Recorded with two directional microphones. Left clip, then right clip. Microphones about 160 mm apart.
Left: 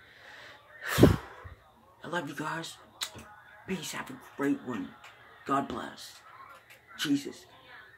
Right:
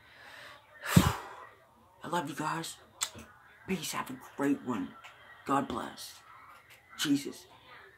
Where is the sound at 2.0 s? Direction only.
20° right (ahead or behind).